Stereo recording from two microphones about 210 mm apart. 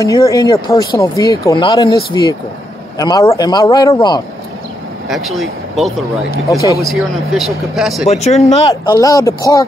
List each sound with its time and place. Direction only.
0.0 s speech: 15° left (ahead or behind)
5.0 s speech: centre (ahead or behind)
8.1 s speech: 30° left (ahead or behind); by 9.7 s 15° left (ahead or behind)